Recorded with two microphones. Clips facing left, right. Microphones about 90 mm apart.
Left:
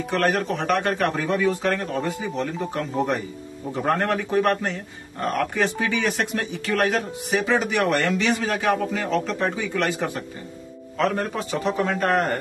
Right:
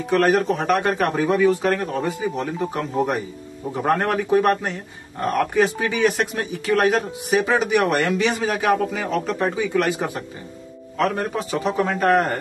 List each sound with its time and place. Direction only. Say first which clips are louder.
0.1 s a man's voice: right 5 dB; 5° right (ahead or behind)